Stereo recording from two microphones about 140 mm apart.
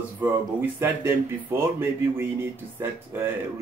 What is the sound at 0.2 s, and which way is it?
Speech, 15° right (ahead or behind).